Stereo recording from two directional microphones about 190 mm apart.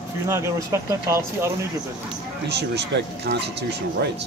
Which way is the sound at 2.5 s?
65° right (ahead or behind).